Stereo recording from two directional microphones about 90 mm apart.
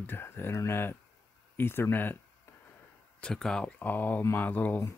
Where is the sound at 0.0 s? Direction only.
25° left (ahead or behind).